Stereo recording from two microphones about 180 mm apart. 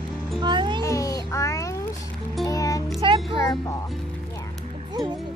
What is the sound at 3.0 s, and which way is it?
Music, 30° right (ahead or behind).